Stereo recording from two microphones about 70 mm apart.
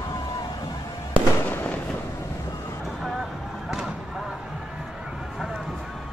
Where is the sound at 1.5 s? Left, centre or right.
Left.